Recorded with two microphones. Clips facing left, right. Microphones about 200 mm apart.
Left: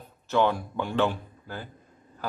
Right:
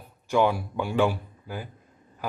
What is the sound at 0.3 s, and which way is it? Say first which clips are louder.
A man's voice: right 1 dB; 10° right (ahead or behind).